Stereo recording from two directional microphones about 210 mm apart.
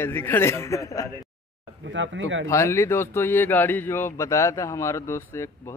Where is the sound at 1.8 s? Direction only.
60° right (ahead or behind).